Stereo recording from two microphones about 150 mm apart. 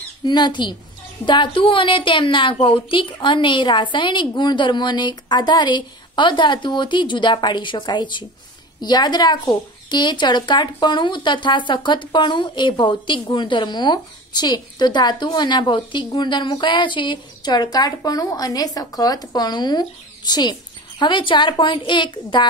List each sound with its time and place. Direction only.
0.2 s a woman's voice: 30° left (ahead or behind)